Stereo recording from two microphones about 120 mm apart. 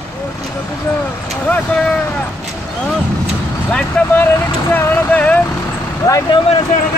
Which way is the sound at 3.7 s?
10° left (ahead or behind).